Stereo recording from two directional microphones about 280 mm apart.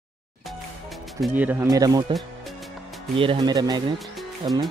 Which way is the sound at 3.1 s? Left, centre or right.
Centre.